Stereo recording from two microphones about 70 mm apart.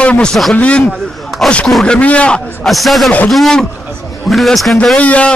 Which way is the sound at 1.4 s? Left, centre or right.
Centre.